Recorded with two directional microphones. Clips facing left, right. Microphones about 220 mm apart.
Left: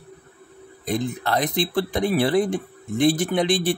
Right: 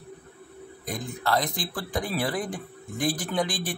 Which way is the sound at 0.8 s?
25° left (ahead or behind).